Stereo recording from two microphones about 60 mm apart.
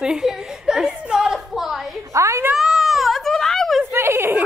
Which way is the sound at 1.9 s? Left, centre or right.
Right.